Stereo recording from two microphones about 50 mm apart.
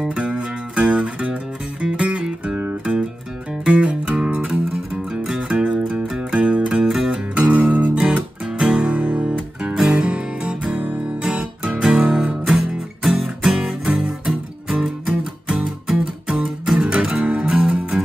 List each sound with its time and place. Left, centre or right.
0.0 s music: right
8.5 s guitar: centre
9.6 s music: centre